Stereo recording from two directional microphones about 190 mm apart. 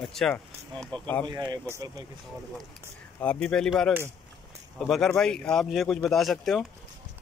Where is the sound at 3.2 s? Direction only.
5° left (ahead or behind).